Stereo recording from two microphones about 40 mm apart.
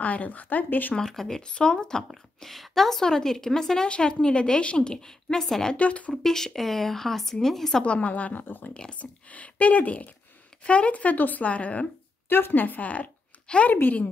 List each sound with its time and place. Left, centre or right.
0.0 s speech: left
1.0 s a woman's voice: centre
2.0 s a woman's voice: centre
3.8 s a woman's voice: left
5.8 s speech: left
6.2 s a woman's voice: centre
7.8 s speech: left
12.3 s a woman's voice: left
12.6 s speech: left
13.5 s a woman's voice: left